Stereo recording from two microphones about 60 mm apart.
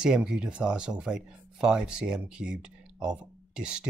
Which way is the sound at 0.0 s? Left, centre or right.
Centre.